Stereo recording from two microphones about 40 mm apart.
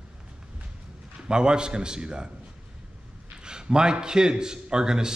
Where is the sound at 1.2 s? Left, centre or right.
Right.